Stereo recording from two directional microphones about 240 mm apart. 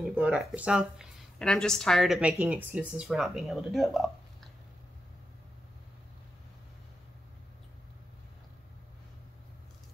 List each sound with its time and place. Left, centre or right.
0.0 s speech: centre